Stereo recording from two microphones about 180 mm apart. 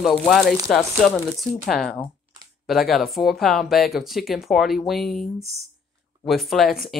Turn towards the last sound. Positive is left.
turn(degrees=0)  # may be behind; listen again after turning